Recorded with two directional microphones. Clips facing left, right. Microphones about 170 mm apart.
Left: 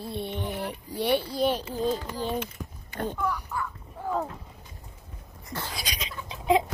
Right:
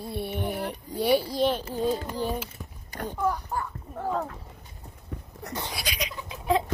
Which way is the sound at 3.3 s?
40° right (ahead or behind).